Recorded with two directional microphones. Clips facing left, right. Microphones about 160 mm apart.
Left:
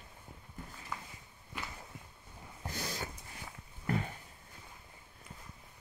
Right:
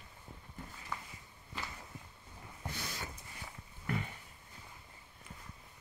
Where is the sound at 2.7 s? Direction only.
40° left (ahead or behind).